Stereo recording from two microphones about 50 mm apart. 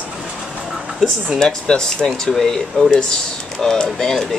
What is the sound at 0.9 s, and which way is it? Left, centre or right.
Speech, centre.